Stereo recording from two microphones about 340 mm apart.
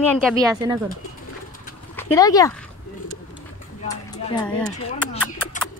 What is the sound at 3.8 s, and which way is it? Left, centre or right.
Speech, centre.